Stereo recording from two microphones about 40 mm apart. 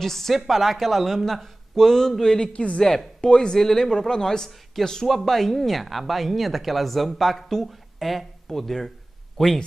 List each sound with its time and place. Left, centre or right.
0.0 s speech: centre
3.5 s speech: centre